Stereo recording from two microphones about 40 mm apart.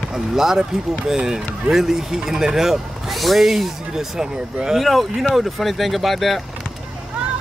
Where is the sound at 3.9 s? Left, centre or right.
Centre.